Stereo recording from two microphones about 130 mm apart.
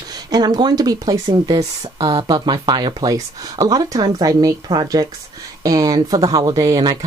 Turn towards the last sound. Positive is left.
turn(degrees=-30)  # may be behind; listen again after turning